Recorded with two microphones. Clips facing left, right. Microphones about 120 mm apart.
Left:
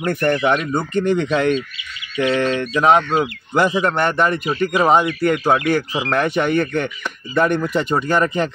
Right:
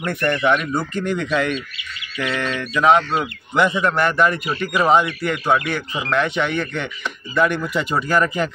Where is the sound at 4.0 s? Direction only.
30° left (ahead or behind).